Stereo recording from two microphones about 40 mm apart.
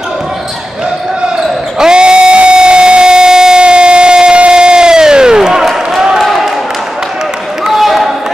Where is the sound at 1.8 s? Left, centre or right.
Right.